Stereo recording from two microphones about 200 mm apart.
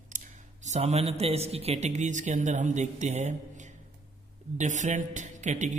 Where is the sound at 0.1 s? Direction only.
40° right (ahead or behind).